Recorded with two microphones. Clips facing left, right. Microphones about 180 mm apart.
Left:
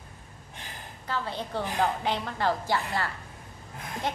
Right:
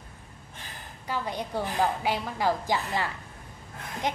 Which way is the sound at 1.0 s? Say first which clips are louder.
Right 1 dB; 15° right (ahead or behind).